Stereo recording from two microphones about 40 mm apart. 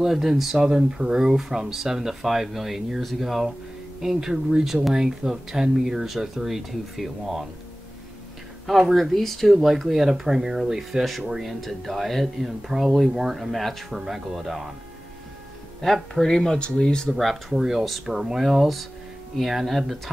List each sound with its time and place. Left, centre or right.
0.0 s speech: centre
8.6 s speech: centre
9.6 s speech: centre
11.6 s speech: centre
13.5 s speech: centre
15.8 s speech: centre
16.5 s speech: left
16.8 s speech: centre
17.2 s speech: centre